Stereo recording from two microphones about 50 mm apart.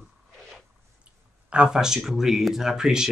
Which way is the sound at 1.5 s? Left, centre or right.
Centre.